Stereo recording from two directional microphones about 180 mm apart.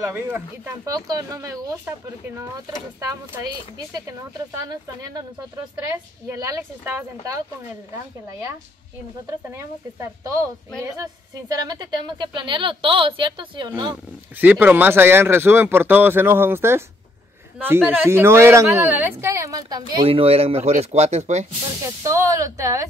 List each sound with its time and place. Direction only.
0.0 s speech: 15° right (ahead or behind)
4.6 s speech: 20° right (ahead or behind)
6.4 s speech: 10° right (ahead or behind)
14.3 s speech: 10° right (ahead or behind); by 21.5 s 40° right (ahead or behind)
21.8 s speech: 15° right (ahead or behind)